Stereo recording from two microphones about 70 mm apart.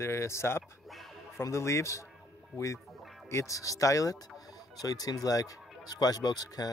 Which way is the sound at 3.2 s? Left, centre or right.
Left.